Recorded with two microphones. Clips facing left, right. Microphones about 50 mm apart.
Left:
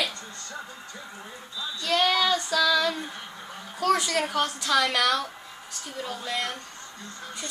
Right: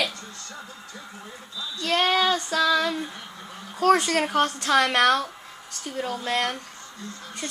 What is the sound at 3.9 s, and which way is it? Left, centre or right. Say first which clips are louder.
Speech: right 4 dB; right.